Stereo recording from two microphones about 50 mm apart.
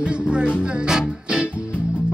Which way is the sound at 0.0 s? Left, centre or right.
Centre.